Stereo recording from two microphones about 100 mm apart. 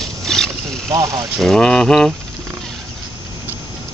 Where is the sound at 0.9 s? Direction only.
35° right (ahead or behind).